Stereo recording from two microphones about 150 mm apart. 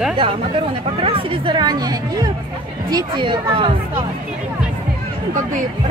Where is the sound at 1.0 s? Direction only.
40° right (ahead or behind).